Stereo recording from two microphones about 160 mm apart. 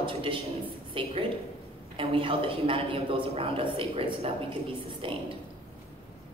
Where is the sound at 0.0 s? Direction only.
35° right (ahead or behind).